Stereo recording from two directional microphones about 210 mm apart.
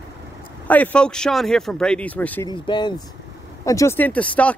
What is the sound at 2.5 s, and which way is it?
Speech, 20° left (ahead or behind).